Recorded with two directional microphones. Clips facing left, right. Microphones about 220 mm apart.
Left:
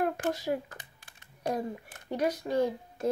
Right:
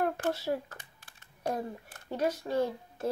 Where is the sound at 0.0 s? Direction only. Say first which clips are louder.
Left 1 dB; 15° left (ahead or behind).